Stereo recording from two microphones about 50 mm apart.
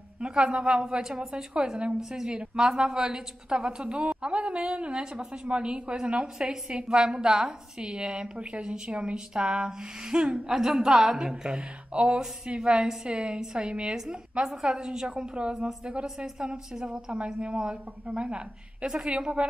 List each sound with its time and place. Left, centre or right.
0.2 s a woman's voice: centre
10.5 s a woman's voice: centre; by 13.9 s right
13.9 s a woman's voice: centre